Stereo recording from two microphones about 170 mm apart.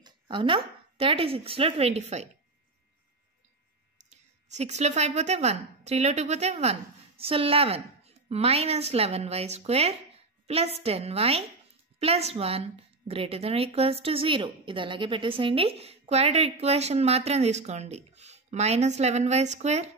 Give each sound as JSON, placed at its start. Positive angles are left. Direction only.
{"t": 0.0, "sound": "a woman's voice", "side_deg": -30}
{"t": 4.1, "sound": "a woman's voice", "side_deg": -40}